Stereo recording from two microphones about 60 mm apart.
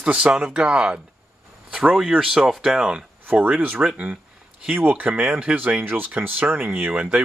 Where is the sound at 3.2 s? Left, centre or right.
Right.